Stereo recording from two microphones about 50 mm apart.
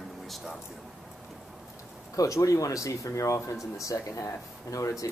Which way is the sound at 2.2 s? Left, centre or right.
Left.